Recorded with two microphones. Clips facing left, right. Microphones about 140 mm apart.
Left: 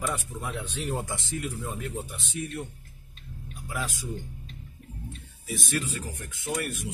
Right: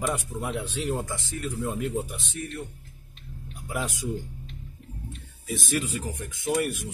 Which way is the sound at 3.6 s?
20° right (ahead or behind).